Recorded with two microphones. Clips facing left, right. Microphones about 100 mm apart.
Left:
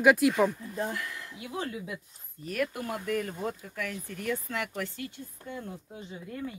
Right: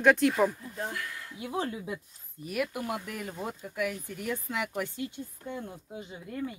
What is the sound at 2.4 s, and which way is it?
Speech, 10° right (ahead or behind).